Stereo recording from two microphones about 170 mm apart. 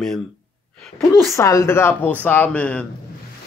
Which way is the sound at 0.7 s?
5° left (ahead or behind).